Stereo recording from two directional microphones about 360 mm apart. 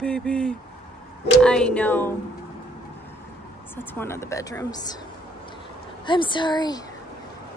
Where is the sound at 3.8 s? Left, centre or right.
Centre.